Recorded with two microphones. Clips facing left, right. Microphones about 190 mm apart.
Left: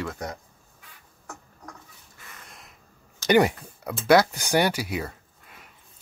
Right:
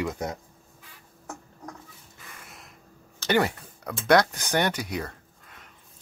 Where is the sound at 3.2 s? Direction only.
15° left (ahead or behind).